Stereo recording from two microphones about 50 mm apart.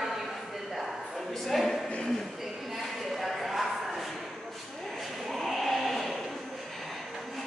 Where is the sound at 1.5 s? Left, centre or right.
Centre.